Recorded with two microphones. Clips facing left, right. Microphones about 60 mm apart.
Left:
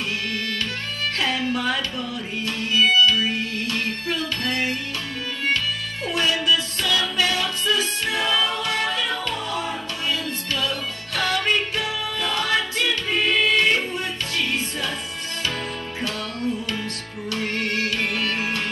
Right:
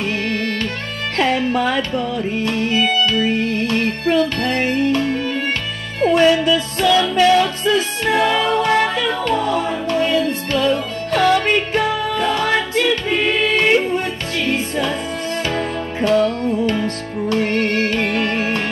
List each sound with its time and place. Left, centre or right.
0.3 s music: right